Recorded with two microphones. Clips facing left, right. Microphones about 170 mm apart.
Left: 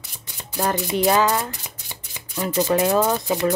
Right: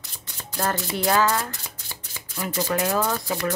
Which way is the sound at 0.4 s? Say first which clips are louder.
Left 3 dB; 15° left (ahead or behind).